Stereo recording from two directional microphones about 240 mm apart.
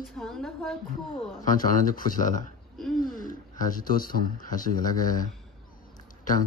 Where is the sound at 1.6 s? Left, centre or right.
Left.